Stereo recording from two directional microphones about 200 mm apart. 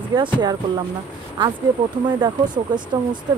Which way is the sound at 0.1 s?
20° right (ahead or behind).